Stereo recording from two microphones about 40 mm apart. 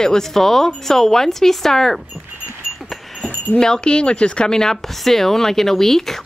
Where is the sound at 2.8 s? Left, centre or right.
Centre.